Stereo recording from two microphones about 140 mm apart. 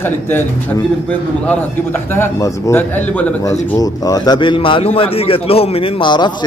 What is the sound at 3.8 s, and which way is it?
A man's voice, 25° left (ahead or behind).